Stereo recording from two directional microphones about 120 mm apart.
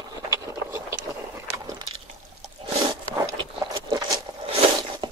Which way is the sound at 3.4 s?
45° right (ahead or behind).